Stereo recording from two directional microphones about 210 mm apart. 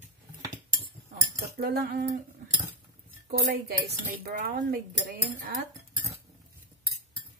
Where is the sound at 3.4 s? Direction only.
45° right (ahead or behind).